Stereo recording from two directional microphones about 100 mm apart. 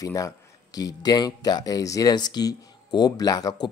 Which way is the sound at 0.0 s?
35° left (ahead or behind).